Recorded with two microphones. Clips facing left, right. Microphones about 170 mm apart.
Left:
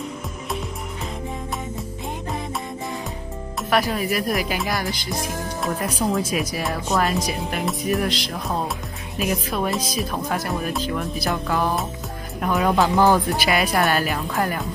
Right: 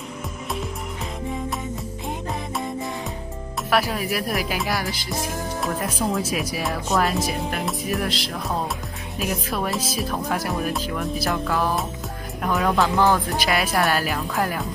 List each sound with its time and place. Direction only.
3.7 s speech: centre (ahead or behind)
12.8 s speech: 15° left (ahead or behind)
13.3 s speech: centre (ahead or behind)